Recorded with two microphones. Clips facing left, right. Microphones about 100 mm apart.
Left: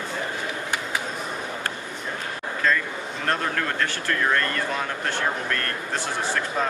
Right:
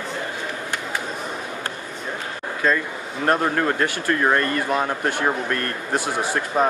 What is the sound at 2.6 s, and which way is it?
Speech, 15° right (ahead or behind).